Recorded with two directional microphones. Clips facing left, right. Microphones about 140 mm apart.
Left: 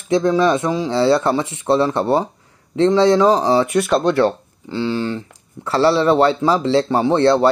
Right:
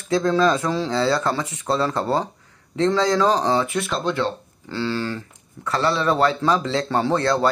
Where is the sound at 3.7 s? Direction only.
65° left (ahead or behind).